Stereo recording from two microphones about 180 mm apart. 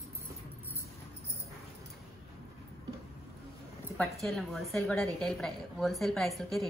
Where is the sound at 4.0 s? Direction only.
Centre (ahead or behind).